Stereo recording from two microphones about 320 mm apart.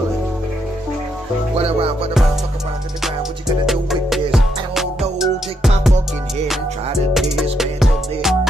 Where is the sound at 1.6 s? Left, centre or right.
Centre.